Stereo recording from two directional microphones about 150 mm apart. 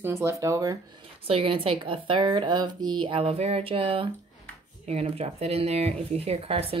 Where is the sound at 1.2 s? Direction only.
40° right (ahead or behind).